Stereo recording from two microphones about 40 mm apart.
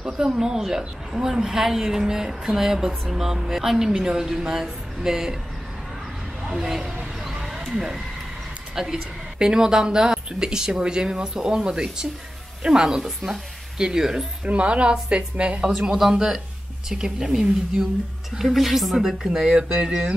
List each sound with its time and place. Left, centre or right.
0.0 s speech: centre
6.4 s speech: centre
7.2 s a sound: centre
7.7 s speech: centre
14.4 s a woman's voice: right
15.6 s speech: centre